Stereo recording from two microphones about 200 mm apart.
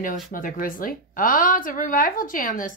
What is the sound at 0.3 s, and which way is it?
A woman's voice, 40° left (ahead or behind).